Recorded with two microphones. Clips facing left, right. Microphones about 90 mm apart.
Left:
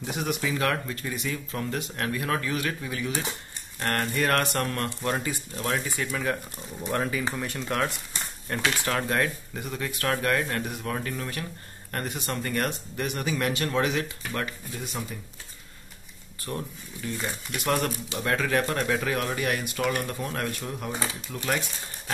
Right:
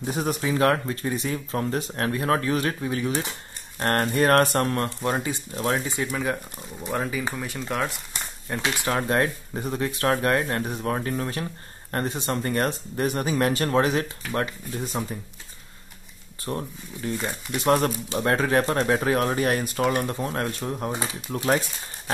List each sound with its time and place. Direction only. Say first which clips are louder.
0.0 s speech: right 3 dB; 35° right (ahead or behind); by 8.5 s 5° right (ahead or behind)
8.6 s speech: right 2 dB; 25° right (ahead or behind)
16.4 s speech: right 4 dB; 30° right (ahead or behind)